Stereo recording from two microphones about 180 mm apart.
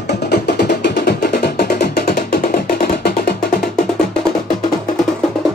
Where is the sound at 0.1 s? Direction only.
65° left (ahead or behind).